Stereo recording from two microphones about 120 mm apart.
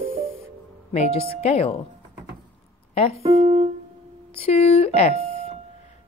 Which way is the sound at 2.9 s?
55° left (ahead or behind).